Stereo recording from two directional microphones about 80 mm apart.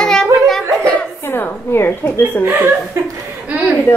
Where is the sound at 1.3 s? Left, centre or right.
Left.